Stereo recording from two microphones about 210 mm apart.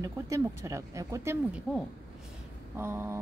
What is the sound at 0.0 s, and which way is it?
Speech, 15° right (ahead or behind).